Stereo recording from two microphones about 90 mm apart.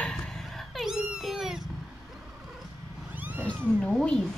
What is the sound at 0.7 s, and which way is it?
Cat, 5° right (ahead or behind).